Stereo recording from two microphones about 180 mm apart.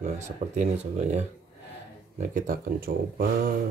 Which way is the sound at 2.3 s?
50° right (ahead or behind).